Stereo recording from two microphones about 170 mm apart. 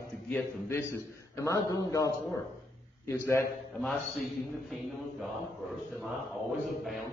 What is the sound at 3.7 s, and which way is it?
Speech, 5° left (ahead or behind).